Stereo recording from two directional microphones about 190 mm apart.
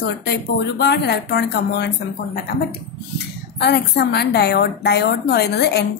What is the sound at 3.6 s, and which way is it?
A woman's voice, 60° left (ahead or behind).